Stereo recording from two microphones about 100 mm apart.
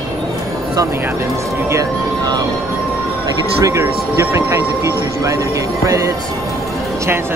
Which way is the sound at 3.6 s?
30° right (ahead or behind).